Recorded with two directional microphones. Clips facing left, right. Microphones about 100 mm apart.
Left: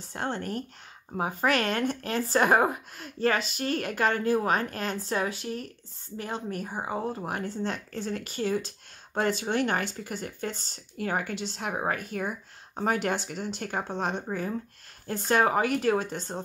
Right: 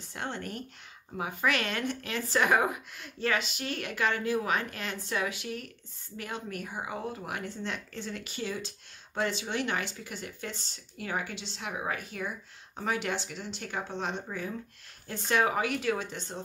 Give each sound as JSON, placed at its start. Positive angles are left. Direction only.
{"t": 0.1, "sound": "speech", "side_deg": 40}